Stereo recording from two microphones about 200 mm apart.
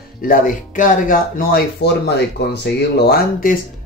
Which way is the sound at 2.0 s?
55° left (ahead or behind).